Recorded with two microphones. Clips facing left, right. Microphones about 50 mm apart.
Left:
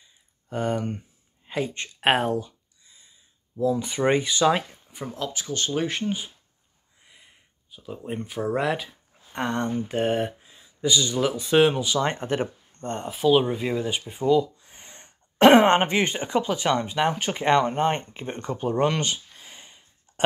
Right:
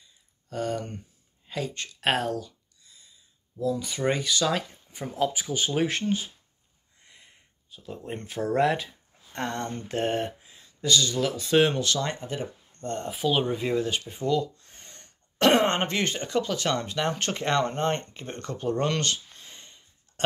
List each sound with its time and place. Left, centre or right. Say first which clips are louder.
0.0 s a sound: left 1 dB; left
4.9 s speech: left 1 dB; centre
5.2 s speech: right 4 dB; centre
5.7 s speech: right 1 dB; centre
7.0 s a sound: left 1 dB; centre
9.3 s speech: left 5 dB; centre
10.8 s speech: left 2 dB; centre
12.0 s speech: left 5 dB; left
12.7 s a sound: left 1 dB; left
13.0 s speech: left 6 dB; centre